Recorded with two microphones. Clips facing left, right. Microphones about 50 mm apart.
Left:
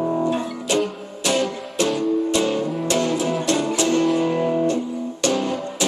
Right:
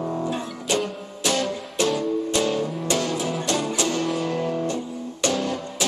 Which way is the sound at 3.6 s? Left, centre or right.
Centre.